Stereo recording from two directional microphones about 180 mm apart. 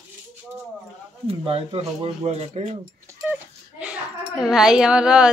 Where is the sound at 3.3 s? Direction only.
10° right (ahead or behind).